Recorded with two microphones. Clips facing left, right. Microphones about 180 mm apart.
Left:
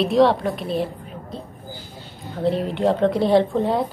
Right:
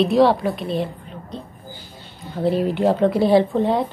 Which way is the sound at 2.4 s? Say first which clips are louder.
Right 2 dB; 5° right (ahead or behind).